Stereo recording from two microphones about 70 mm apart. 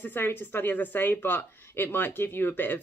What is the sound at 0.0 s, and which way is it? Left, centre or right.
Speech, left.